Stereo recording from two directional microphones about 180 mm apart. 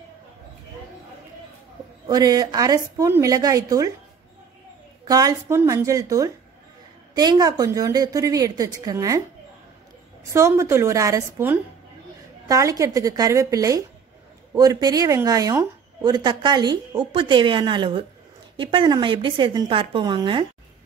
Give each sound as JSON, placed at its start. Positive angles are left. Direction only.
{"t": 2.0, "sound": "a woman's voice", "side_deg": -20}
{"t": 5.0, "sound": "a woman's voice", "side_deg": -20}
{"t": 10.3, "sound": "a woman's voice", "side_deg": -15}